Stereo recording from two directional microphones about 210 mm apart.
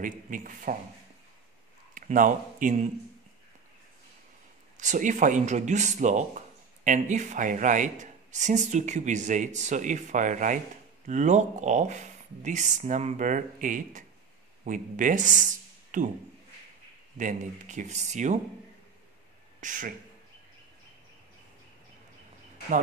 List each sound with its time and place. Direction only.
0.0 s speech: 40° right (ahead or behind)
2.0 s speech: 40° right (ahead or behind)
4.7 s speech: 35° right (ahead or behind)
17.2 s speech: 35° right (ahead or behind)
19.6 s speech: 40° right (ahead or behind)